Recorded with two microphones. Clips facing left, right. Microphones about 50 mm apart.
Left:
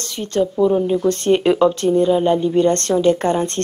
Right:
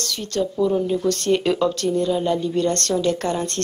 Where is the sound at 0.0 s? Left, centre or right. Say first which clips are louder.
Left 4 dB; left.